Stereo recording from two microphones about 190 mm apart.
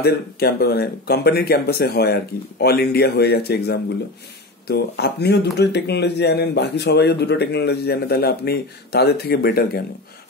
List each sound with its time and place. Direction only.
0.0 s speech: 55° left (ahead or behind)